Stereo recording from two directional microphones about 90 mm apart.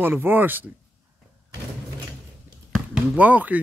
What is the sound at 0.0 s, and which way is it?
Speech, 25° right (ahead or behind).